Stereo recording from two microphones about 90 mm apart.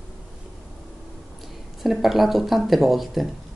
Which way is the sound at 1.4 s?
Centre (ahead or behind).